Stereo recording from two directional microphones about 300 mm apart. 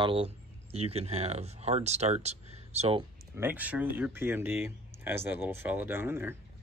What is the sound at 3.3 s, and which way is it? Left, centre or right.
Speech, centre.